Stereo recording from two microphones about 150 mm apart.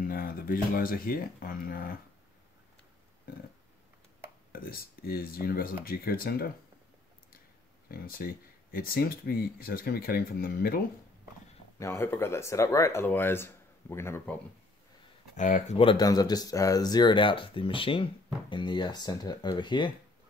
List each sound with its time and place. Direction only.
0.1 s speech: 70° left (ahead or behind)
4.5 s speech: 75° left (ahead or behind)
7.9 s speech: 80° left
11.8 s speech: 15° left (ahead or behind)
15.3 s speech: 55° left (ahead or behind)
15.8 s speech: 30° left (ahead or behind)